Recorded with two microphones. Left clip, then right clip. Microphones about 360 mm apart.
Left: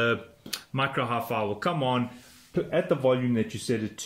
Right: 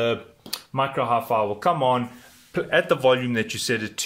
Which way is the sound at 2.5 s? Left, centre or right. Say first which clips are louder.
Right 5 dB; right.